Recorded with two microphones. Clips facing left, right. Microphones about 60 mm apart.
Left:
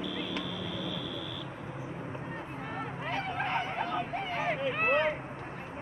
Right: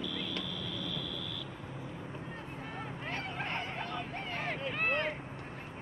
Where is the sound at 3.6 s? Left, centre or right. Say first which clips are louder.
Left 6 dB; left.